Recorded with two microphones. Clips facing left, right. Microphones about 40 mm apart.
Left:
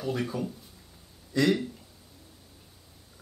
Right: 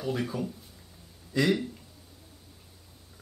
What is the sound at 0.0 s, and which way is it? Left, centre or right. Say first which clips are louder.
Speech: even; centre.